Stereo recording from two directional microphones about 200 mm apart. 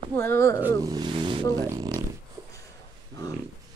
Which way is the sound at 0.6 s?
15° right (ahead or behind).